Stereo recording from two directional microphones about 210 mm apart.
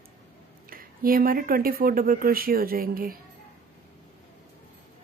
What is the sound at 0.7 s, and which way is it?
Speech, 45° right (ahead or behind).